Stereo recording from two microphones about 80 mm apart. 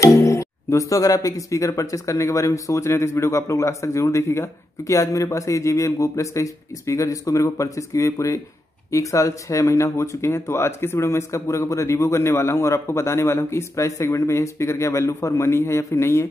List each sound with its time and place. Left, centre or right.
0.0 s speech: left